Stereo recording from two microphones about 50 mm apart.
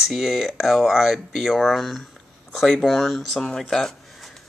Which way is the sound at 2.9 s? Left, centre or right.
Centre.